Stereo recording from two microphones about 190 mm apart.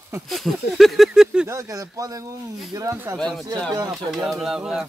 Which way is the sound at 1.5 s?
15° right (ahead or behind).